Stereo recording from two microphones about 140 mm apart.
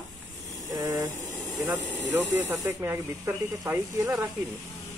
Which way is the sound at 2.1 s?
10° right (ahead or behind).